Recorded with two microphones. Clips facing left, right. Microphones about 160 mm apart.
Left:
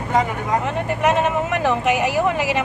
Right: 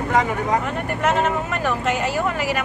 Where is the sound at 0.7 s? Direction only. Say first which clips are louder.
Left 2 dB; 15° left (ahead or behind).